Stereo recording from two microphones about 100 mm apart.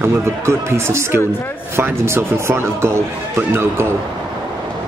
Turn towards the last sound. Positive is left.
turn(degrees=-25)  # may be behind; listen again after turning